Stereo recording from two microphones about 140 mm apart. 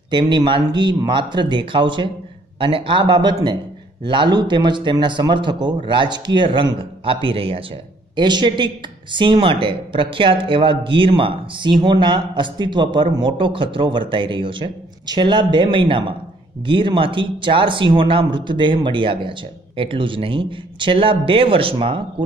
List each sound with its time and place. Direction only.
0.1 s speech: 35° right (ahead or behind)